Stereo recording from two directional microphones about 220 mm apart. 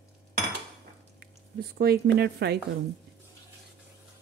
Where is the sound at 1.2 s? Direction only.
45° right (ahead or behind).